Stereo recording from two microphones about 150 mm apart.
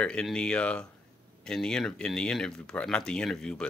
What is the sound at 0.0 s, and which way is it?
Speech, 5° left (ahead or behind).